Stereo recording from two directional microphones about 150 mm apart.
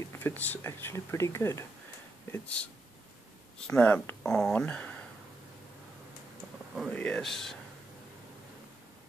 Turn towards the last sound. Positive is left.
turn(degrees=0)  # may be behind; listen again after turning